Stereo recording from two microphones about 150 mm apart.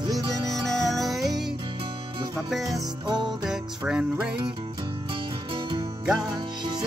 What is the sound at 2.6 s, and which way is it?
Music, 25° right (ahead or behind).